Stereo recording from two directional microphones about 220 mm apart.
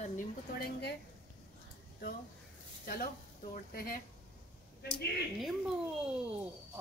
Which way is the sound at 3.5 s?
40° left (ahead or behind).